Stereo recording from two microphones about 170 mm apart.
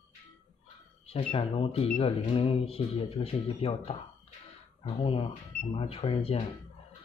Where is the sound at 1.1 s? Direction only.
35° left (ahead or behind).